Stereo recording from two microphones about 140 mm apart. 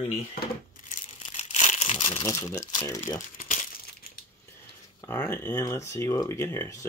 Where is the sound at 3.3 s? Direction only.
55° left (ahead or behind).